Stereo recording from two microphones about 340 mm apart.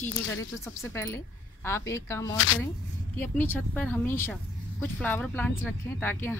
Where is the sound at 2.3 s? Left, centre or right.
Left.